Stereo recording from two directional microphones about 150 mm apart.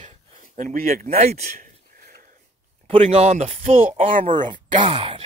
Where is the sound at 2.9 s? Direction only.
40° right (ahead or behind).